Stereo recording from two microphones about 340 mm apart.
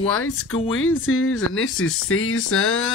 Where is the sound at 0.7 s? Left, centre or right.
Left.